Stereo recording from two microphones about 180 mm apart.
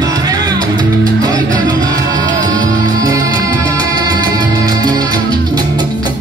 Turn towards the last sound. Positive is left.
turn(degrees=-20)  # may be behind; listen again after turning